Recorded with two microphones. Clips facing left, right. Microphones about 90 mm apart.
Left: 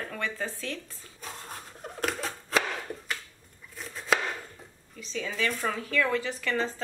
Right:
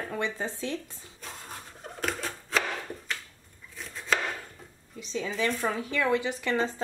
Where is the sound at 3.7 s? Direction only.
Centre (ahead or behind).